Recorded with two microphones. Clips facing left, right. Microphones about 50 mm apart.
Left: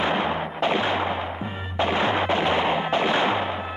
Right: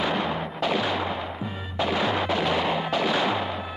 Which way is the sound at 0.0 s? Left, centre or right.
Left.